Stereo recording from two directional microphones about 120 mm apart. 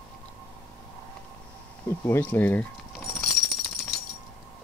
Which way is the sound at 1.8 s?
15° left (ahead or behind).